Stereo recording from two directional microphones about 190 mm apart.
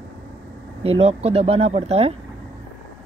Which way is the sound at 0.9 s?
30° right (ahead or behind).